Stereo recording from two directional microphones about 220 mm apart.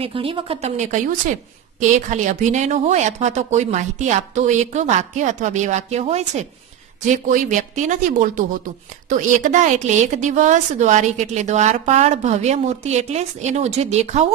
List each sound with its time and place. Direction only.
0.0 s a woman's voice: 25° right (ahead or behind)